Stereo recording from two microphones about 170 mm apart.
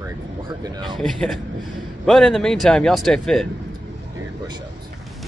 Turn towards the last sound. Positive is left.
turn(degrees=5)  # may be behind; listen again after turning